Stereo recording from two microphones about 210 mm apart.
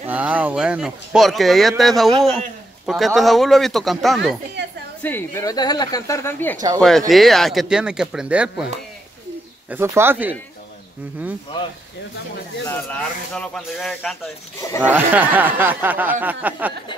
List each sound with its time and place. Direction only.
0.1 s speech: 5° right (ahead or behind)
4.6 s a sound: 55° right (ahead or behind)
5.0 s speech: 10° left (ahead or behind); by 8.6 s 5° right (ahead or behind)
9.7 s speech: 10° right (ahead or behind)
12.6 s speech: 5° left (ahead or behind)